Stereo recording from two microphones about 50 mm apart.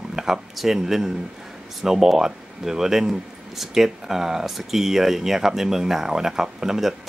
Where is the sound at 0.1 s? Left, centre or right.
Centre.